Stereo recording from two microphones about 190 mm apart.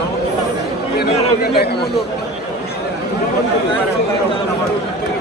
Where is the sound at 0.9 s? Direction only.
60° left (ahead or behind).